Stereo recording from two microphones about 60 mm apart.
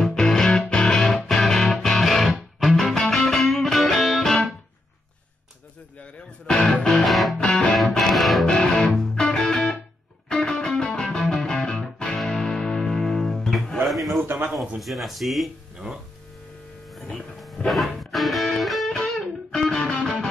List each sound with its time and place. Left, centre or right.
0.0 s music: centre
6.4 s music: centre
7.0 s music: centre
7.4 s music: centre
7.7 s music: centre
8.5 s music: centre
13.8 s a sound: centre
14.2 s a sound: right
14.8 s speech: centre
17.6 s music: centre